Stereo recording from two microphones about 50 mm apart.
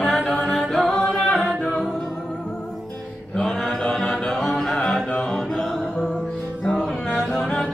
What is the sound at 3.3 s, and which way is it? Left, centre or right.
Music, centre.